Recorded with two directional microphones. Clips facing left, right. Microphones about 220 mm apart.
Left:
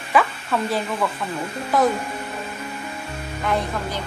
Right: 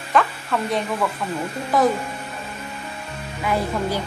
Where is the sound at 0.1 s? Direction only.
5° left (ahead or behind).